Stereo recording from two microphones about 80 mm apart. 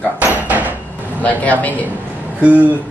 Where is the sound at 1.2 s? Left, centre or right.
Centre.